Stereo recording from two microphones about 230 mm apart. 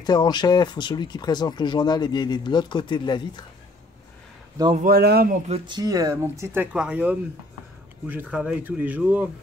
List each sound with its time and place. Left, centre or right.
0.0 s speech: centre
4.7 s a man's voice: right
5.7 s speech: centre